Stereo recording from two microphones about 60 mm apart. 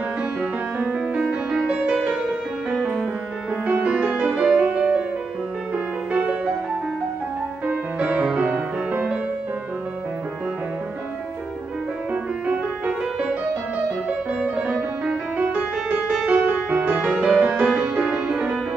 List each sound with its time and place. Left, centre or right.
0.8 s music: centre
6.1 s music: centre
7.6 s music: right
12.1 s music: centre
14.4 s music: centre
15.3 s music: right
17.0 s music: centre